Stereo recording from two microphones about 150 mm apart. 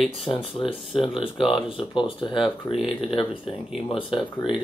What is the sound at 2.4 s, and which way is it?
Speech, centre (ahead or behind).